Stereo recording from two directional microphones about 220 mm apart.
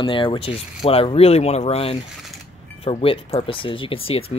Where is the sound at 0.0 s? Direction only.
20° left (ahead or behind).